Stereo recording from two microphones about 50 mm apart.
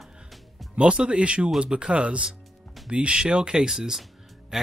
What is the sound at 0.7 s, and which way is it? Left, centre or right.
Speech, right.